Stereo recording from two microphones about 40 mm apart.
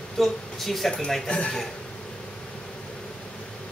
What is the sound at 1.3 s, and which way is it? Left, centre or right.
Speech, left.